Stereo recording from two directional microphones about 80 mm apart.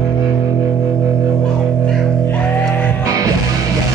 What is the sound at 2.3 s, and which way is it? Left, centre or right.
Music, centre.